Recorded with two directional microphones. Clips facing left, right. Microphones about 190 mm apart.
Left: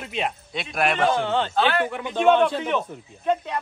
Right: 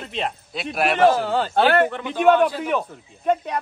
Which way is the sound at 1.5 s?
55° right (ahead or behind).